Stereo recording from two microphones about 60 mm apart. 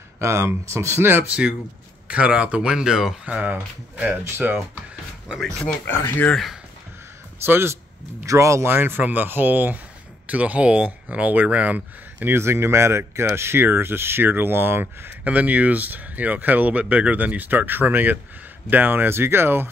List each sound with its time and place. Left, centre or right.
0.2 s speech: right
2.0 s speech: right
2.7 s speech: centre
3.3 s speech: right
4.2 s speech: right
5.9 s speech: left
7.4 s speech: right
8.3 s speech: right
8.6 s speech: right
12.3 s speech: right
15.2 s speech: right